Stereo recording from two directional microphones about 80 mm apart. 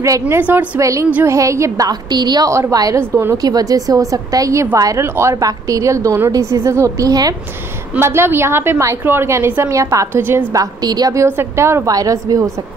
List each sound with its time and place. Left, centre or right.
0.0 s a woman's voice: right
0.4 s a woman's voice: right
0.7 s a woman's voice: right
1.9 s a woman's voice: right
2.5 s a woman's voice: right
3.0 s a woman's voice: right
3.3 s a woman's voice: right
5.0 s a woman's voice: right
8.0 s a woman's voice: right
10.5 s a woman's voice: right
11.2 s a woman's voice: right
11.9 s a woman's voice: right